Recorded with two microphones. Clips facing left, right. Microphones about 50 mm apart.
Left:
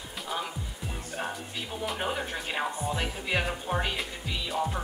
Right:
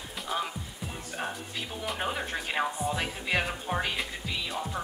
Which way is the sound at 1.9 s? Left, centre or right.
Centre.